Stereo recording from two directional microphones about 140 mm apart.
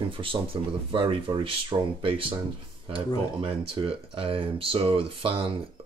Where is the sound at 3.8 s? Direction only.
40° right (ahead or behind).